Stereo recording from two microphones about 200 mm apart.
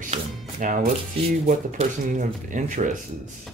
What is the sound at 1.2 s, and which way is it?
Speech, 30° right (ahead or behind).